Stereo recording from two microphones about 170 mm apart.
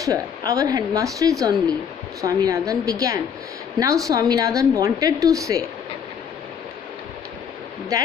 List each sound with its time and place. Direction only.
0.0 s a woman's voice: 20° right (ahead or behind)